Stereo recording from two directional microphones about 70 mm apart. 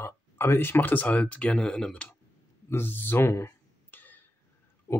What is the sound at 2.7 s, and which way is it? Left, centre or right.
Speech, left.